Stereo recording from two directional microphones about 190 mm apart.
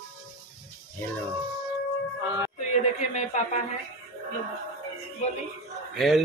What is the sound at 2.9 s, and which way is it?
Speech, 35° left (ahead or behind).